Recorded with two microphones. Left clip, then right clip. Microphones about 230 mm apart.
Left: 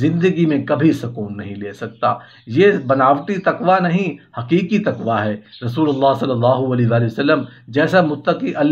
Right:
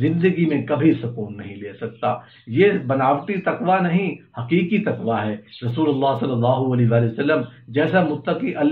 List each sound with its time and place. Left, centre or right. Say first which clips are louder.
0.0 s a man's voice: left 3 dB; left